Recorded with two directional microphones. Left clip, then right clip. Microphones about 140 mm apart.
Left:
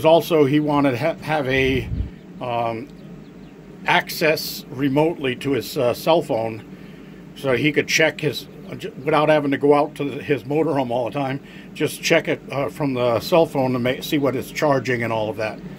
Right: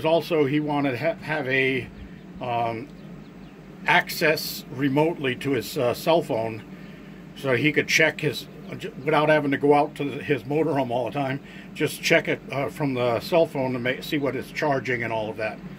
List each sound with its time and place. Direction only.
0.0 s speech: 15° left (ahead or behind)
3.8 s speech: 15° left (ahead or behind)